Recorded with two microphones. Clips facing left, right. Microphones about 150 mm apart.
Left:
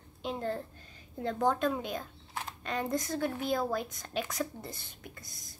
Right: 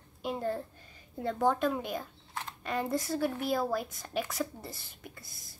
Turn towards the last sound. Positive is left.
turn(degrees=-5)  # may be behind; listen again after turning